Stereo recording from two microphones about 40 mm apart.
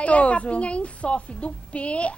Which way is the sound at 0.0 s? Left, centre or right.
Left.